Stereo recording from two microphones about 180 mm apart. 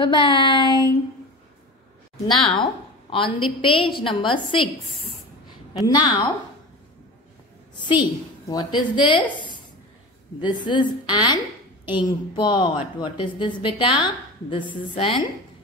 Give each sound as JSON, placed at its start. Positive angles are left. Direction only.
{"t": 0.0, "sound": "a woman's voice", "side_deg": 30}
{"t": 2.1, "sound": "a woman's voice", "side_deg": 25}
{"t": 5.9, "sound": "a woman's voice", "side_deg": 25}
{"t": 8.5, "sound": "a woman's voice", "side_deg": 25}